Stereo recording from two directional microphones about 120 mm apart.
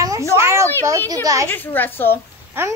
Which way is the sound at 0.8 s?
30° right (ahead or behind).